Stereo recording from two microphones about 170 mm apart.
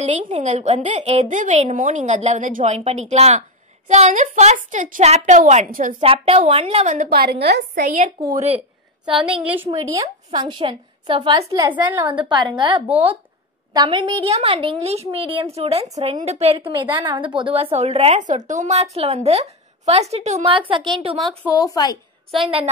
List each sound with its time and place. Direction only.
0.0 s a woman's voice: 40° right (ahead or behind)
6.0 s a woman's voice: 35° right (ahead or behind)
7.1 s a woman's voice: 70° right (ahead or behind); by 8.1 s 50° right (ahead or behind)
8.4 s a woman's voice: 35° right (ahead or behind)
9.9 s a woman's voice: 25° right (ahead or behind)
20.4 s a woman's voice: 30° right (ahead or behind)
21.5 s a woman's voice: 20° left (ahead or behind)